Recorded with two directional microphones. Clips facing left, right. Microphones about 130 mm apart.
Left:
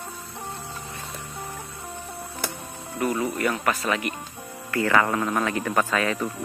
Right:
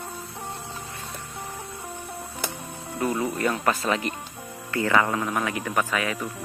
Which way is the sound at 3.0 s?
25° right (ahead or behind).